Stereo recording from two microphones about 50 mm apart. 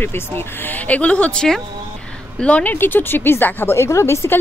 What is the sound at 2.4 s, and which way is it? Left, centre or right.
Speech, left.